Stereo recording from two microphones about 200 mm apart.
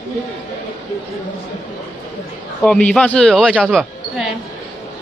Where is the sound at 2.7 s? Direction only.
5° left (ahead or behind).